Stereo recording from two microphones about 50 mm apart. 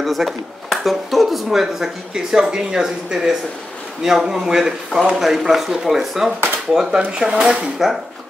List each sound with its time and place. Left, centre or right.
0.0 s speech: centre